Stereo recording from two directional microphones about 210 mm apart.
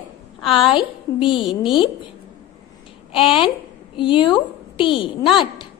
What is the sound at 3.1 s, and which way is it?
A woman's voice, 25° left (ahead or behind).